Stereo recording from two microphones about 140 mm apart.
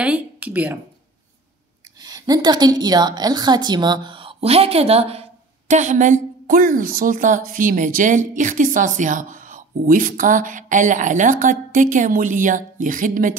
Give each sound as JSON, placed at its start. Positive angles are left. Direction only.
{"t": 0.0, "sound": "speech", "side_deg": -10}
{"t": 2.0, "sound": "a woman's voice", "side_deg": -30}